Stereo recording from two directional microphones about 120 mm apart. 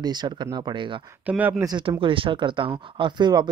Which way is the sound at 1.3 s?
15° right (ahead or behind).